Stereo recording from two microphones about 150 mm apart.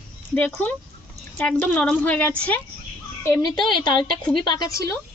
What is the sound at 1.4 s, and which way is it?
A woman's voice, 10° left (ahead or behind).